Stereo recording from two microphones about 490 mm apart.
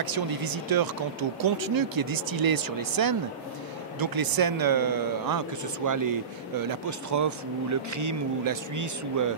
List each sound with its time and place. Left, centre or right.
0.0 s speech: right